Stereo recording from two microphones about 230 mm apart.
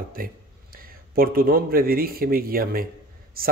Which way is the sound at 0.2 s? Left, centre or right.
Right.